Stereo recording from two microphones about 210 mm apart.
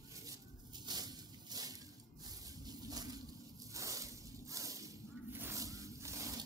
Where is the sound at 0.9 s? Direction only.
20° right (ahead or behind).